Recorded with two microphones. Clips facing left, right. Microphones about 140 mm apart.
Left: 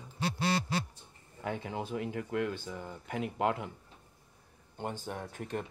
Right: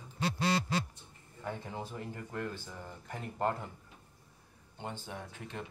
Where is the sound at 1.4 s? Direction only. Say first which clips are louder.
Left 4 dB; 75° left (ahead or behind).